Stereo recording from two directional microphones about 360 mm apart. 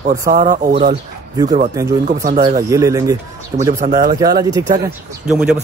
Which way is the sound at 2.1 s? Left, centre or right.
Right.